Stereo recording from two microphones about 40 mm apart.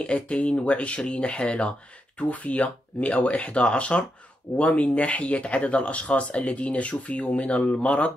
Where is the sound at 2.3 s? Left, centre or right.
Left.